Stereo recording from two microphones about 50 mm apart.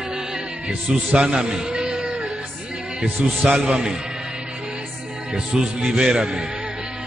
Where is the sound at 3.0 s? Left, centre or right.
Right.